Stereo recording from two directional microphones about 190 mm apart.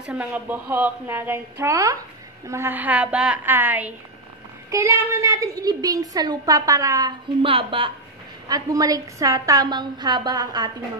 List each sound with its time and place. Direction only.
0.0 s a woman's voice: 5° right (ahead or behind)